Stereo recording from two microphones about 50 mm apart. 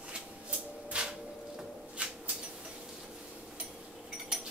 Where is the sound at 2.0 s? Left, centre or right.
Right.